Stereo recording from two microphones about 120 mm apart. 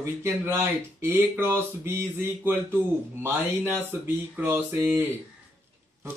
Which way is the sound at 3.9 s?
15° right (ahead or behind).